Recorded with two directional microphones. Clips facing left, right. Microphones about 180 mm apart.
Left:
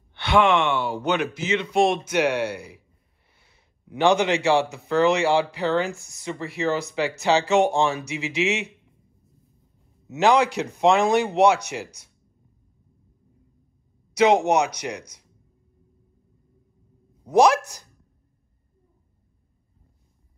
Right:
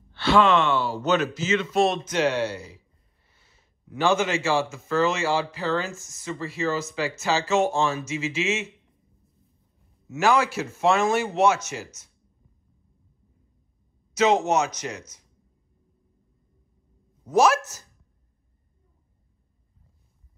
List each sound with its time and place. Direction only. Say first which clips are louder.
0.1 s speech: even; 15° left (ahead or behind)
10.0 s speech: left 3 dB; 20° left (ahead or behind)
14.1 s speech: left 3 dB; 15° left (ahead or behind)
17.3 s speech: left 3 dB; 15° left (ahead or behind)